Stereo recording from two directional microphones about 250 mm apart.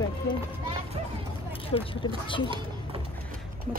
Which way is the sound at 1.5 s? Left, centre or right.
Left.